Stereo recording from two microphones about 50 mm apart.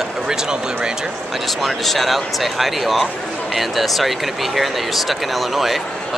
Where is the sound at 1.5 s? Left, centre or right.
Centre.